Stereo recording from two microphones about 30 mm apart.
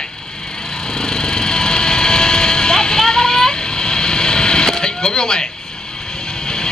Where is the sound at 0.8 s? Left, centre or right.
Left.